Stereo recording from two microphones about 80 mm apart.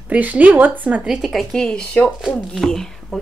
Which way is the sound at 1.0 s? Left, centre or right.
Centre.